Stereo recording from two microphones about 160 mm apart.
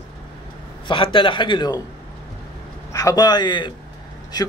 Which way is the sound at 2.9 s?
25° left (ahead or behind).